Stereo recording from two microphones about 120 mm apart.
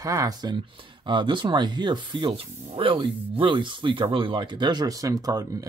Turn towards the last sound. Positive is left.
turn(degrees=-30)  # may be behind; listen again after turning